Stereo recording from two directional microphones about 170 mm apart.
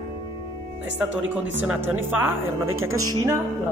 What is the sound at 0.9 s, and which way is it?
Speech, 10° right (ahead or behind).